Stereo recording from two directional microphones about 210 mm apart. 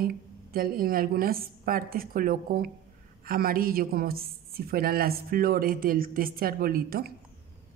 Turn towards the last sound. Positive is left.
turn(degrees=-45)  # may be behind; listen again after turning